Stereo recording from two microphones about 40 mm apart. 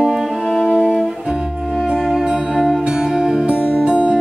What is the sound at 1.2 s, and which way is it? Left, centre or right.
Music, centre.